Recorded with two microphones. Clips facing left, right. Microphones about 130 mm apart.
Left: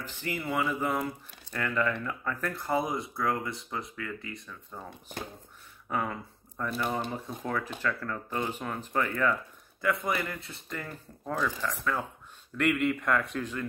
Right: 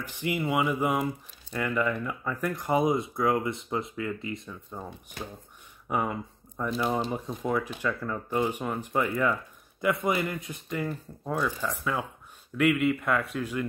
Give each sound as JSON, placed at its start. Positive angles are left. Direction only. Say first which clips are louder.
{"t": 0.0, "sound": "speech", "louder": "right 5 dB", "side_deg": -15}
{"t": 5.9, "sound": "speech", "louder": "right 3 dB", "side_deg": -15}